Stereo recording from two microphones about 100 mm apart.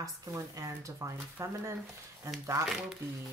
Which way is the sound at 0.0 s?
35° right (ahead or behind).